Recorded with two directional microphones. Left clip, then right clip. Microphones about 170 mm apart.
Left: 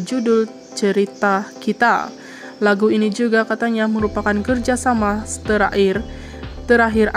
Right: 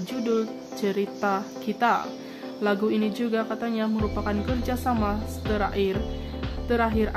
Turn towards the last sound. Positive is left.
turn(degrees=40)  # may be behind; listen again after turning